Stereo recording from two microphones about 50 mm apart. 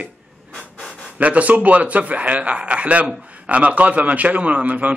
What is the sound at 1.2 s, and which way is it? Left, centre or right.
Speech, right.